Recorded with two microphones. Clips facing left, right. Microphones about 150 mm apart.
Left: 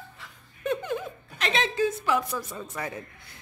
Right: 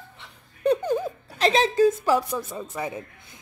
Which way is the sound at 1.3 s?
35° right (ahead or behind).